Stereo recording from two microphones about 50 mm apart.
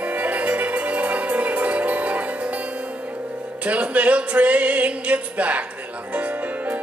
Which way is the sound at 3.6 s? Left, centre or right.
Right.